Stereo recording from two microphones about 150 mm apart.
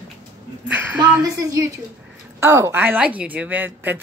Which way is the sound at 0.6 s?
10° right (ahead or behind).